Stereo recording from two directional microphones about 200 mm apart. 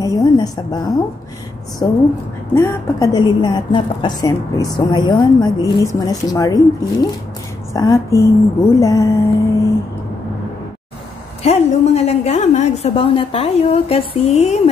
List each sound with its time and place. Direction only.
0.0 s a woman's voice: 20° left (ahead or behind)
1.8 s a woman's voice: 15° left (ahead or behind)
11.4 s a woman's voice: 30° left (ahead or behind)